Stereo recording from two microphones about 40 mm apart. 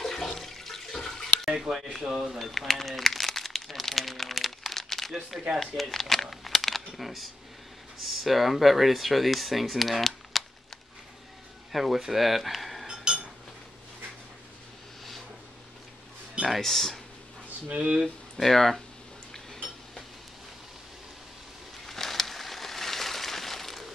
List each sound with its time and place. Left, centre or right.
0.0 s toilet flush: centre
1.5 s speech: centre
2.3 s speech: centre
3.0 s crumpling: centre
5.6 s speech: centre
12.8 s a sound: centre
16.4 s speech: centre
17.6 s speech: right
18.0 s speech: centre
19.3 s a sound: centre
21.8 s a sound: centre